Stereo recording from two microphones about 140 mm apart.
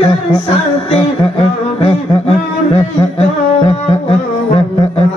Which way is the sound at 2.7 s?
45° left (ahead or behind).